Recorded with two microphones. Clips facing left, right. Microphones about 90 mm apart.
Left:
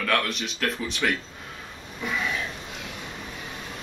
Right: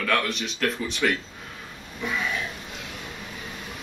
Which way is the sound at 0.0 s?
Centre (ahead or behind).